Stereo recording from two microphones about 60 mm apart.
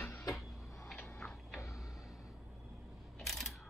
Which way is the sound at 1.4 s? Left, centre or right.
Centre.